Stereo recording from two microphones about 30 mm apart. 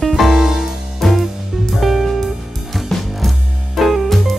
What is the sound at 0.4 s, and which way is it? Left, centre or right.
Music, centre.